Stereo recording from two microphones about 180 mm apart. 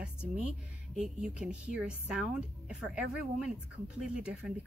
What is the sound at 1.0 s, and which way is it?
Speech, 5° right (ahead or behind).